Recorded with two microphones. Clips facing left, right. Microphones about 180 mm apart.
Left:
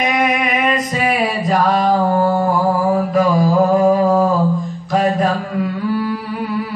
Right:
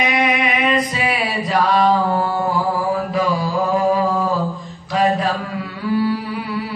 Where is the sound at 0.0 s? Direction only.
50° left (ahead or behind).